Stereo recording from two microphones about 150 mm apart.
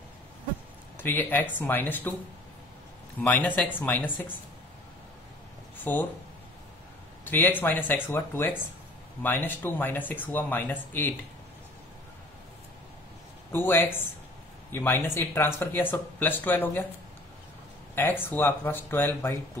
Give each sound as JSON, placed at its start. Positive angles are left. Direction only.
{"t": 0.9, "sound": "speech", "side_deg": 15}
{"t": 3.2, "sound": "speech", "side_deg": 10}
{"t": 5.9, "sound": "speech", "side_deg": 15}
{"t": 7.2, "sound": "speech", "side_deg": 15}
{"t": 13.5, "sound": "speech", "side_deg": 15}
{"t": 18.2, "sound": "speech", "side_deg": 15}